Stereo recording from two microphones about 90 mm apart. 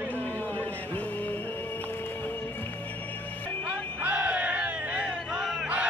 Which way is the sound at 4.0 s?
15° right (ahead or behind).